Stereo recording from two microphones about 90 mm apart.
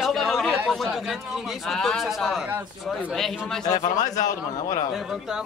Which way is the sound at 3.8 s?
45° left (ahead or behind).